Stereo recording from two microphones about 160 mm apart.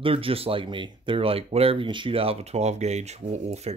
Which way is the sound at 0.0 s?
35° right (ahead or behind).